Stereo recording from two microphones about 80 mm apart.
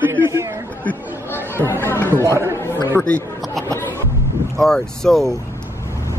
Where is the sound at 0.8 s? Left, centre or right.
Left.